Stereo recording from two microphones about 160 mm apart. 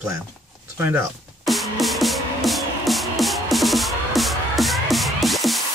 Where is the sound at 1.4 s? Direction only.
Centre (ahead or behind).